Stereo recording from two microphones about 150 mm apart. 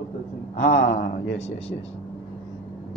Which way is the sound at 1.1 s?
45° left (ahead or behind).